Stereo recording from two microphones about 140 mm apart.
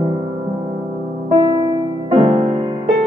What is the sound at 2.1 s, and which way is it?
Music, 40° right (ahead or behind).